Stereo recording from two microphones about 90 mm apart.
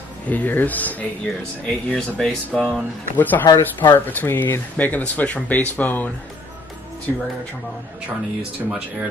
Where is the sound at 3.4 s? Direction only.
50° left (ahead or behind).